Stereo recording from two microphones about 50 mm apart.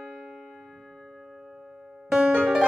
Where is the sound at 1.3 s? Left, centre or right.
Centre.